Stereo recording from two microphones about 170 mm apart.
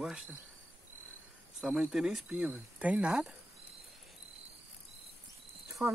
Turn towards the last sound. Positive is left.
turn(degrees=-15)  # may be behind; listen again after turning